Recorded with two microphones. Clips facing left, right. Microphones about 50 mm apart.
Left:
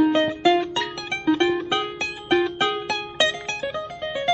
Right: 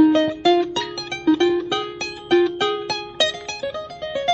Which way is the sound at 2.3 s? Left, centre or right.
Centre.